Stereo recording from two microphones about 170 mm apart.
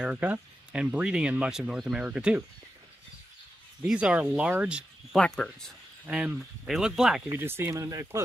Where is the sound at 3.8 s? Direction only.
5° right (ahead or behind).